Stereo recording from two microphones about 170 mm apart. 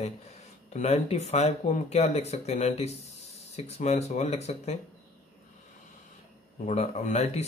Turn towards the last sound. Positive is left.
turn(degrees=40)  # may be behind; listen again after turning